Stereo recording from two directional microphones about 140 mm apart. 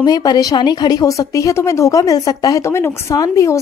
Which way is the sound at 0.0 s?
30° left (ahead or behind).